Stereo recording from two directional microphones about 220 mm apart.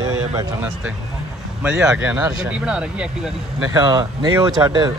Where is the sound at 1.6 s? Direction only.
5° right (ahead or behind).